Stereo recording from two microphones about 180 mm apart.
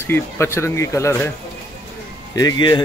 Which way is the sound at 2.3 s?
20° left (ahead or behind).